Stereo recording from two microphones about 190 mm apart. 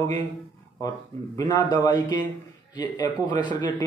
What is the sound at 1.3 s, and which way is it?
Speech, 20° left (ahead or behind).